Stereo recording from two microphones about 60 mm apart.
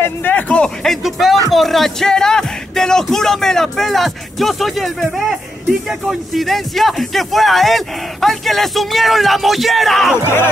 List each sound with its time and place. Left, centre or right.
0.0 s music: left
0.8 s music: centre
1.5 s speech: centre
10.2 s speech: left